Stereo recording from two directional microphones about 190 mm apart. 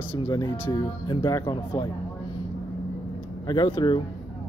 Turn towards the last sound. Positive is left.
turn(degrees=25)  # may be behind; listen again after turning